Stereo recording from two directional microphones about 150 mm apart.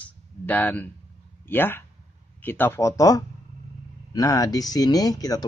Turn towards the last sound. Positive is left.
turn(degrees=25)  # may be behind; listen again after turning